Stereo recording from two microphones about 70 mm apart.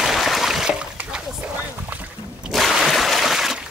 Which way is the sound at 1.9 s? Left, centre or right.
Right.